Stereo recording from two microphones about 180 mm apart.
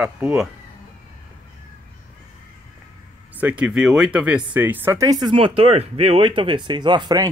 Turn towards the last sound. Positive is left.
turn(degrees=-25)  # may be behind; listen again after turning